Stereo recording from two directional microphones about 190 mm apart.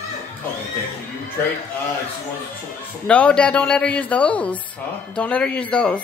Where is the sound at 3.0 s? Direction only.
5° left (ahead or behind).